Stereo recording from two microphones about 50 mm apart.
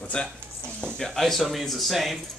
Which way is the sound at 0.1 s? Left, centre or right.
Left.